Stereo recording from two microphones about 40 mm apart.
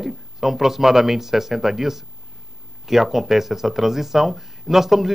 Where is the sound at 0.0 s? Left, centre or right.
Centre.